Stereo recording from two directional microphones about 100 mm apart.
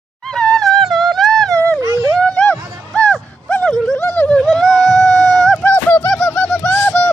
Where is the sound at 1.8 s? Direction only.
35° right (ahead or behind).